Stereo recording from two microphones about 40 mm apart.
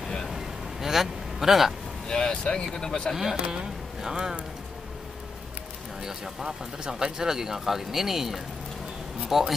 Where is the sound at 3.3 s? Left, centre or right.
Right.